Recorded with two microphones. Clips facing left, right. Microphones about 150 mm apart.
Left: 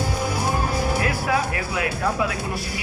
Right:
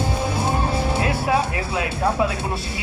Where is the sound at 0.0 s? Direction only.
25° right (ahead or behind).